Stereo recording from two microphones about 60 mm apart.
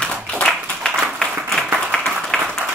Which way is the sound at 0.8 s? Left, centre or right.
Centre.